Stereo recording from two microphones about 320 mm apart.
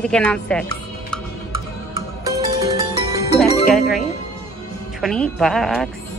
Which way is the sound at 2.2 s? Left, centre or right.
Centre.